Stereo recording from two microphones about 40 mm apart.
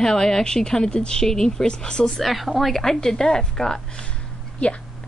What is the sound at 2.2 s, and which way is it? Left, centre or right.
A woman's voice, centre.